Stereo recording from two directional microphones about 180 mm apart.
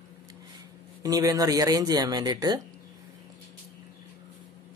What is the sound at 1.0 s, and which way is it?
Speech, 20° right (ahead or behind).